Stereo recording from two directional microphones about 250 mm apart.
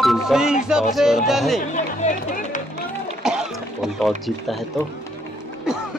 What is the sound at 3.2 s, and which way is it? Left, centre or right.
Music, centre.